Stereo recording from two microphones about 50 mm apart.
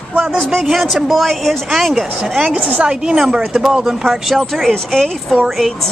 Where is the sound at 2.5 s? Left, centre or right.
Right.